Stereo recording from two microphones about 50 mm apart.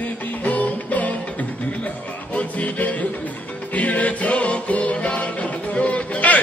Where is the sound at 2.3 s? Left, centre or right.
Left.